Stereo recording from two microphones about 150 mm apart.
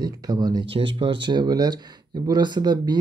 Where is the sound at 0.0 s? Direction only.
25° right (ahead or behind).